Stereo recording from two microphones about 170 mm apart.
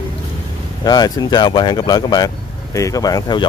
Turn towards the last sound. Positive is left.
turn(degrees=20)  # may be behind; listen again after turning